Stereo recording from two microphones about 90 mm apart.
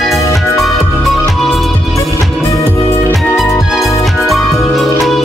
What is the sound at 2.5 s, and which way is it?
Music, 35° left (ahead or behind).